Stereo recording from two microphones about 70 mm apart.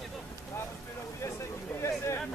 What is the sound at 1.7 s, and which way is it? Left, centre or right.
Speech, left.